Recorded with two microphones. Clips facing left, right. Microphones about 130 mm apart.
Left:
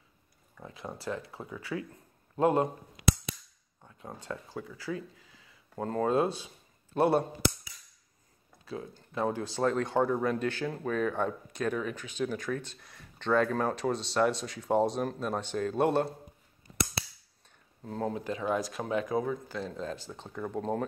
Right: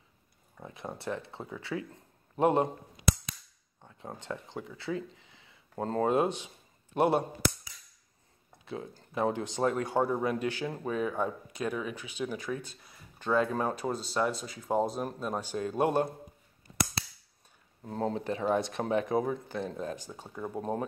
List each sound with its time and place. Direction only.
0.6 s speech: 25° right (ahead or behind)
3.8 s speech: 25° right (ahead or behind)
9.1 s speech: 20° right (ahead or behind)
17.8 s speech: 25° right (ahead or behind)